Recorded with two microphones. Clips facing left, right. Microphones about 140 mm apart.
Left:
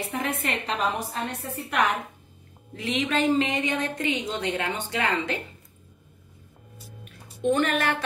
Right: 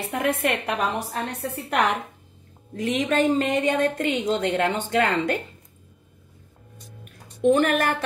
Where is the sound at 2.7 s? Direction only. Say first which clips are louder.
Right 4 dB; 45° right (ahead or behind).